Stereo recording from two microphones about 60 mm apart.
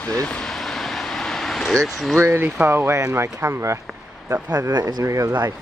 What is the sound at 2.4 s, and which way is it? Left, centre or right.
Speech, right.